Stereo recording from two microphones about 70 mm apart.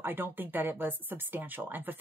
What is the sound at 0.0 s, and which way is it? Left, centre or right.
Speech, right.